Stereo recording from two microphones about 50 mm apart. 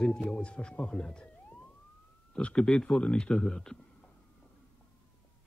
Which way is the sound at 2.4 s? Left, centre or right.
Left.